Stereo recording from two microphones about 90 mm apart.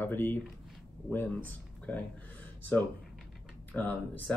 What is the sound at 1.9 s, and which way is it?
Speech, 15° left (ahead or behind).